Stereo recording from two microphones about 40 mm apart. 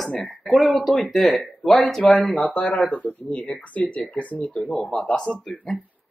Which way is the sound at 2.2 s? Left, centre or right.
Left.